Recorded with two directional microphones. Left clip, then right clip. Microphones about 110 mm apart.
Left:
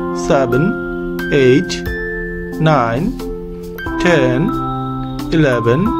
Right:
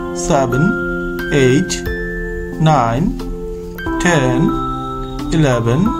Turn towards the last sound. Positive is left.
turn(degrees=50)  # may be behind; listen again after turning